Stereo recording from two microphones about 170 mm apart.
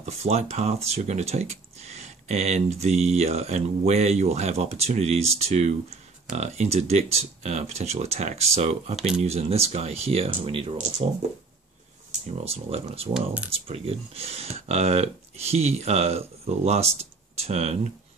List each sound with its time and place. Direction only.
0.0 s speech: 40° right (ahead or behind)
8.9 s speech: 5° right (ahead or behind)
9.2 s speech: 40° right (ahead or behind)
12.4 s speech: 35° right (ahead or behind)
13.1 s speech: 10° right (ahead or behind)
13.5 s speech: 35° right (ahead or behind)